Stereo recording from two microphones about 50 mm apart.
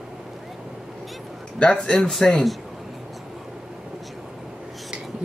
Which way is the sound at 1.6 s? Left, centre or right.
Centre.